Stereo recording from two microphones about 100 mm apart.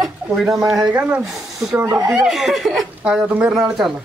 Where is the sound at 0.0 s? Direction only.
5° right (ahead or behind).